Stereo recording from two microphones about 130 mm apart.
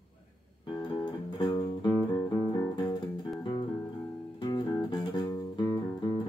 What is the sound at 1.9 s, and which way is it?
Music, 20° left (ahead or behind).